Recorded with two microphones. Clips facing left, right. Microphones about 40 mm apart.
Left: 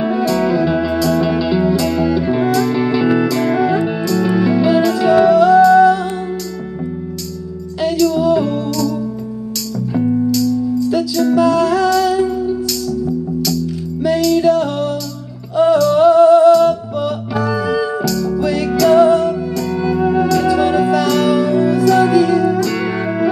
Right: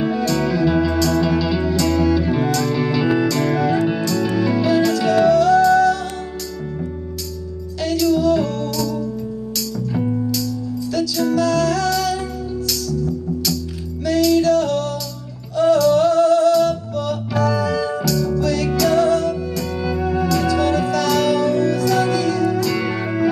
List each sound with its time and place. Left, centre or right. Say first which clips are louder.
0.0 s music: left 4 dB; centre
8.2 s music: left 3 dB; centre
9.9 s music: left 7 dB; centre
11.3 s music: left 5 dB; centre
13.4 s music: left 5 dB; centre
14.4 s music: left 3 dB; centre
18.0 s music: left 2 dB; centre
18.3 s music: left 3 dB; centre
18.7 s music: left 8 dB; centre
18.9 s music: left 6 dB; centre